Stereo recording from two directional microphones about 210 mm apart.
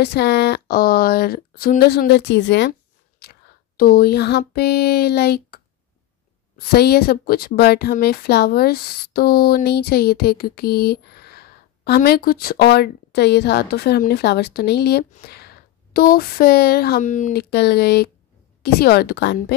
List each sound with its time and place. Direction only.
0.0 s speech: 50° left (ahead or behind)
3.2 s a sound: 45° left (ahead or behind)
6.6 s speech: 50° left (ahead or behind)